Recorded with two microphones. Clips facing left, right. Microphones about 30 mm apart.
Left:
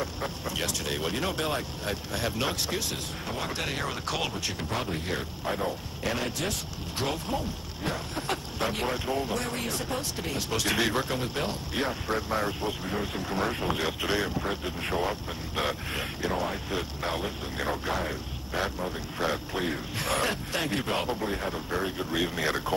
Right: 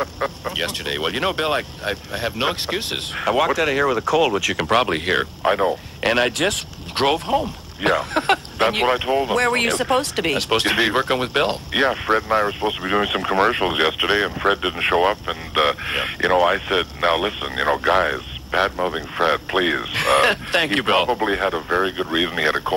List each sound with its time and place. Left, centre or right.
0.0 s speech: right
2.1 s speech: right
4.6 s speech: right
6.1 s speech: right
9.4 s speech: right
12.2 s speech: right
12.8 s speech: right
14.4 s speech: right